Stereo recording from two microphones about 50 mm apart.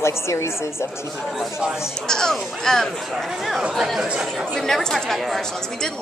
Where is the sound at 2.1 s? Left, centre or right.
Centre.